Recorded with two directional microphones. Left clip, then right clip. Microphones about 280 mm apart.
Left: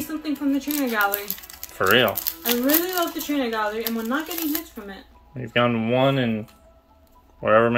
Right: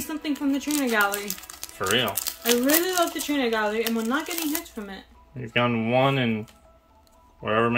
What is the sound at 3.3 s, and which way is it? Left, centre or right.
Speech, right.